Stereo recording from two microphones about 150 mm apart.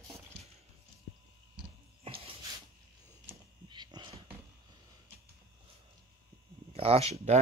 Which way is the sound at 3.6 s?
30° right (ahead or behind).